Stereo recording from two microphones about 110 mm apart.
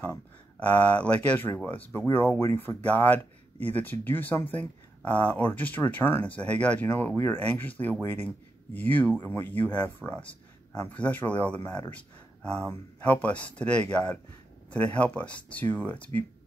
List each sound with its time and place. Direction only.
0.0 s speech: 15° left (ahead or behind)